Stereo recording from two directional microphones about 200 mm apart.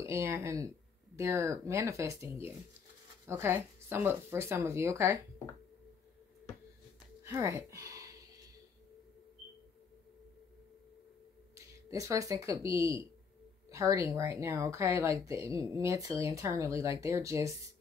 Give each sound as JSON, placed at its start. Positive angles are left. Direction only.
{"t": 0.0, "sound": "speech", "side_deg": -15}
{"t": 7.2, "sound": "speech", "side_deg": -15}
{"t": 11.5, "sound": "speech", "side_deg": -15}